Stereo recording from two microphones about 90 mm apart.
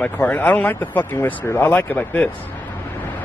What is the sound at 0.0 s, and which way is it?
Speech, 20° left (ahead or behind).